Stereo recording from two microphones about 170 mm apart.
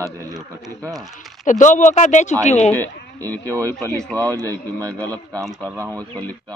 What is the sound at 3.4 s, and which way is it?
Speech, 20° right (ahead or behind).